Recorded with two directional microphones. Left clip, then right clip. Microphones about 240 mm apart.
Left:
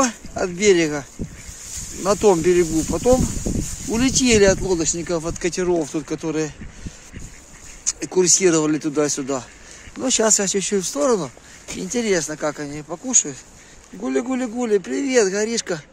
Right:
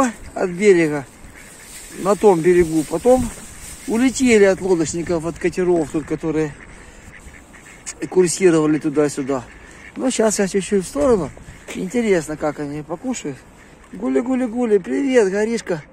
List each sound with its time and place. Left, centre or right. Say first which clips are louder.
0.0 s speech: right 2 dB; centre
2.0 s speech: right 2 dB; centre
8.0 s speech: right 2 dB; centre